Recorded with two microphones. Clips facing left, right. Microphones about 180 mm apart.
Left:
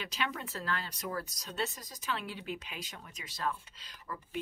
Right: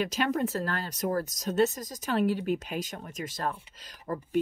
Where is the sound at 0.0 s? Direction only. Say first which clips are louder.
Right 11 dB; 45° right (ahead or behind).